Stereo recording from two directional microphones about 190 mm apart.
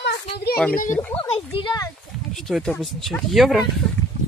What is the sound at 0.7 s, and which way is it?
Speech, 45° left (ahead or behind).